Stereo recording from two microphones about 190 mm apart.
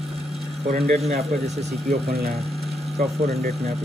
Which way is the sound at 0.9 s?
35° right (ahead or behind).